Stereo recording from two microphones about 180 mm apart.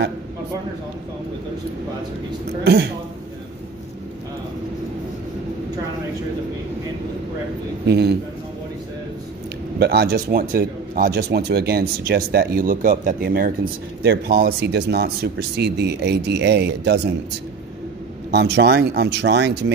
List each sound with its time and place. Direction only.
2.6 s a man's voice: 65° right (ahead or behind)
7.8 s a man's voice: 65° right (ahead or behind)
9.8 s a man's voice: 65° right (ahead or behind)
14.0 s a man's voice: 65° right (ahead or behind)
18.3 s speech: 65° right (ahead or behind)